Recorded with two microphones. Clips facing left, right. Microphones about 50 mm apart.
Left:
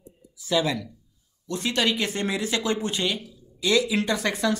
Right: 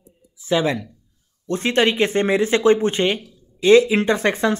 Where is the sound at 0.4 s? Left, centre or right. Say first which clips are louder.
Right 4 dB; right.